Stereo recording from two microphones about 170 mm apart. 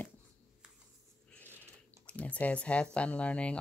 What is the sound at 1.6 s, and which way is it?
Speech, 10° left (ahead or behind).